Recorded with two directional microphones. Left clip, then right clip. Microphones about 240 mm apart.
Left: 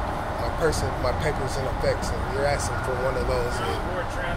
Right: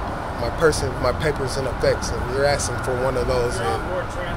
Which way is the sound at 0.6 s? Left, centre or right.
Right.